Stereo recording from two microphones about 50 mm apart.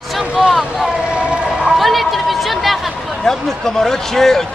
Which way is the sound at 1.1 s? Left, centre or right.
Right.